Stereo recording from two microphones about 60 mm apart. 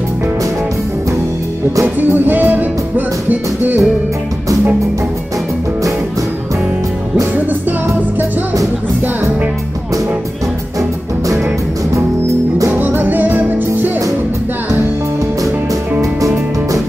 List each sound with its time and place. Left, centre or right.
2.0 s music: right
12.7 s music: right